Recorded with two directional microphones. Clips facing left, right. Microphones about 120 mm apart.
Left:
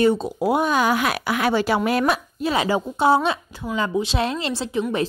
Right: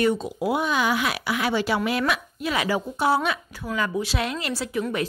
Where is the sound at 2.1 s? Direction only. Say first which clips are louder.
Left 4 dB; 30° left (ahead or behind).